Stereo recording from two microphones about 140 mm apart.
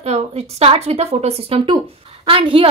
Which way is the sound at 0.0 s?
50° right (ahead or behind).